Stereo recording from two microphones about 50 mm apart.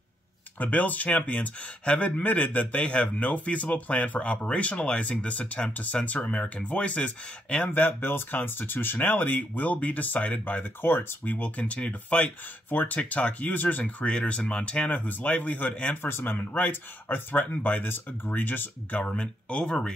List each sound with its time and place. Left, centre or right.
0.6 s speech: left
7.7 s speech: left
11.2 s speech: left
14.0 s speech: left
16.0 s speech: left
18.9 s speech: left